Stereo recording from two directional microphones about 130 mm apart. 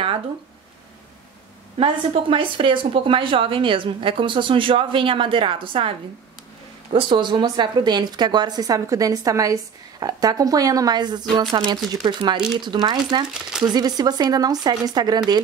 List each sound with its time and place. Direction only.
1.8 s speech: 40° right (ahead or behind)
13.3 s speech: 5° right (ahead or behind)
13.7 s speech: 30° right (ahead or behind)